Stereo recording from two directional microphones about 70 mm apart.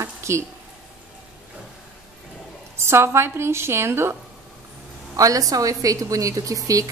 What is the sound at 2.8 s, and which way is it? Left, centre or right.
A woman's voice, right.